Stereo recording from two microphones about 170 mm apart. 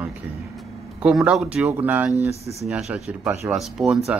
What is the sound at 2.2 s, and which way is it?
Speech, 40° right (ahead or behind).